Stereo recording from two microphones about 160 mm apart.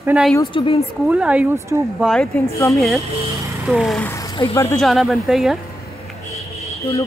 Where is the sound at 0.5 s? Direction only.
35° left (ahead or behind).